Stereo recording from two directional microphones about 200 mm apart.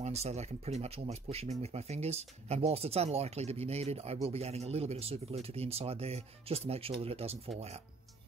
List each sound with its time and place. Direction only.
0.0 s speech: 35° right (ahead or behind)